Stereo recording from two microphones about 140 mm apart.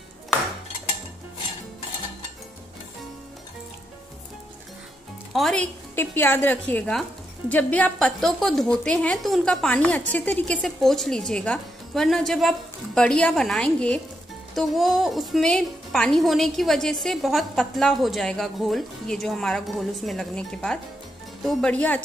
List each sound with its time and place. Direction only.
5.3 s speech: 5° left (ahead or behind)
5.9 s a woman's voice: 15° left (ahead or behind)